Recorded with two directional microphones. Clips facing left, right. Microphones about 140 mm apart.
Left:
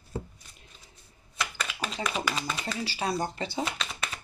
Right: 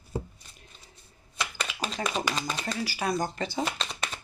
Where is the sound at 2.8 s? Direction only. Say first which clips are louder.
Right 1 dB; 30° left (ahead or behind).